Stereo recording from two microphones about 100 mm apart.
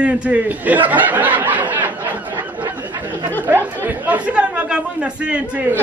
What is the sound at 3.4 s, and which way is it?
Chatter, 20° right (ahead or behind).